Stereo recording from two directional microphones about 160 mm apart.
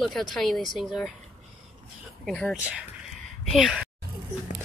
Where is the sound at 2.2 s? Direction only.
5° left (ahead or behind).